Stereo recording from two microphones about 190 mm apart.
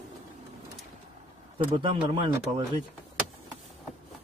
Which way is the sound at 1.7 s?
25° right (ahead or behind).